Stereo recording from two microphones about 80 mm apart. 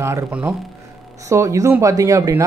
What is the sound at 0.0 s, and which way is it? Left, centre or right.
Speech, right.